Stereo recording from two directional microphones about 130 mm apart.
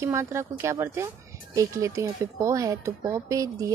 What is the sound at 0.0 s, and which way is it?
Speech, 20° right (ahead or behind).